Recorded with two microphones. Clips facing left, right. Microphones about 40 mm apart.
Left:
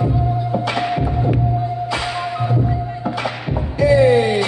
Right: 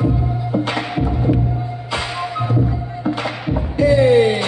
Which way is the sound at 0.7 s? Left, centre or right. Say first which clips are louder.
Left 2 dB; centre.